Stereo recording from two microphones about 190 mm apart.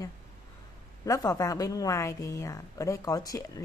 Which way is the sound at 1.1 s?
20° left (ahead or behind).